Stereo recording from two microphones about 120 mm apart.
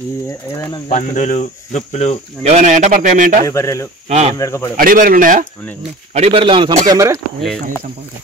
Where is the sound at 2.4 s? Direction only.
75° right (ahead or behind).